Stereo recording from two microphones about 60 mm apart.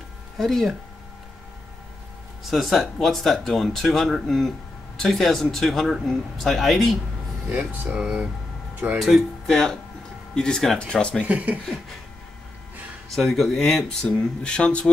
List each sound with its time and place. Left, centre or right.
0.4 s speech: centre
2.4 s speech: centre
7.9 s speech: centre
10.3 s speech: centre
11.2 s speech: right
13.1 s speech: centre
14.0 s speech: centre